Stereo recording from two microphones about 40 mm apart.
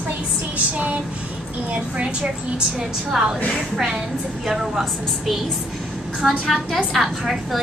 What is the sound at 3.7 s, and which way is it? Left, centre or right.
A woman's voice, centre.